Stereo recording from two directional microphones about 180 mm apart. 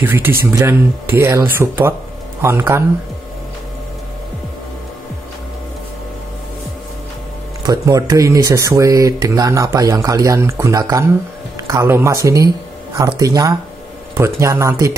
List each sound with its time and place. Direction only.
0.0 s speech: 10° right (ahead or behind)
7.6 s speech: 20° right (ahead or behind)